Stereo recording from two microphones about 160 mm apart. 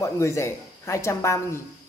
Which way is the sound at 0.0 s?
20° left (ahead or behind).